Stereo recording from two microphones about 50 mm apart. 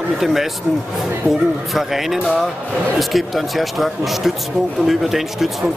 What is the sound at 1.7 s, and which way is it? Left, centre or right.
Speech, centre.